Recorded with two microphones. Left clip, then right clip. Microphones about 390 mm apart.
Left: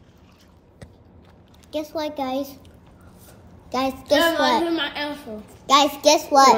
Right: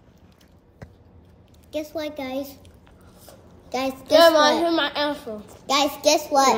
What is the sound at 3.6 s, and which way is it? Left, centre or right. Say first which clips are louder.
Speech: left 2 dB; centre.